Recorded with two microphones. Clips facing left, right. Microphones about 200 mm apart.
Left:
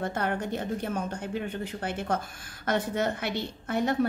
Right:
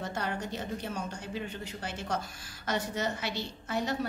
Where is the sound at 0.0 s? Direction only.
55° left (ahead or behind).